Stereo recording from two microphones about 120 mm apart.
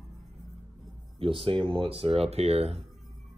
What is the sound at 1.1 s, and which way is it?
Speech, 50° right (ahead or behind).